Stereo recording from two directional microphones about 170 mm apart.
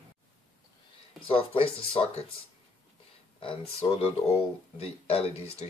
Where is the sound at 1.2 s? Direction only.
35° left (ahead or behind).